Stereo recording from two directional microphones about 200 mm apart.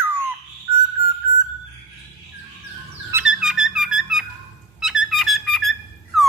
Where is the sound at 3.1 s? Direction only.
5° right (ahead or behind).